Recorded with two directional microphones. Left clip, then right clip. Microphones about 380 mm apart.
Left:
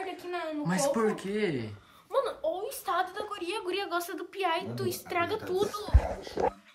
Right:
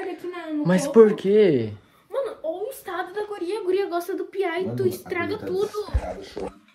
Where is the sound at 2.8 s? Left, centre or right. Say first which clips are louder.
Right 1 dB; centre.